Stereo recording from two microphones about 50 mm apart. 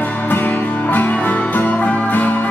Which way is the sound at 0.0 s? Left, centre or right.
Left.